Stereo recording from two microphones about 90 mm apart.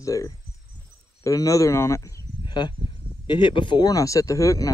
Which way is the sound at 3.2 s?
65° left (ahead or behind).